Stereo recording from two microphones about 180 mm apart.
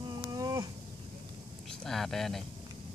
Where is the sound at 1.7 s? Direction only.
Centre (ahead or behind).